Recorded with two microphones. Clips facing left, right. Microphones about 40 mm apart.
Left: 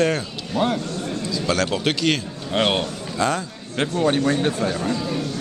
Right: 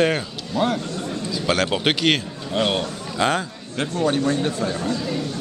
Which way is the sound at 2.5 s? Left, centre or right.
Left.